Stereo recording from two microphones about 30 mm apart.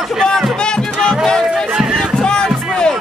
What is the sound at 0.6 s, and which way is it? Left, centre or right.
Music, left.